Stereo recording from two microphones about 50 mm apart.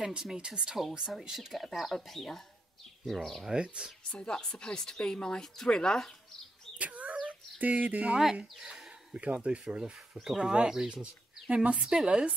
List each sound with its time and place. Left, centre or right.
0.0 s speech: centre
3.5 s speech: centre
4.1 s speech: centre
6.8 s a sound: right
9.1 s speech: right